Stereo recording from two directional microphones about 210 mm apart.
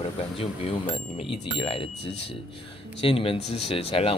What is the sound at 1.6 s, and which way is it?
Speech, 25° left (ahead or behind).